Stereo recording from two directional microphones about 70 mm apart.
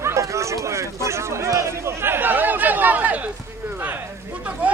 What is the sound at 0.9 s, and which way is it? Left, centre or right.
Speech, right.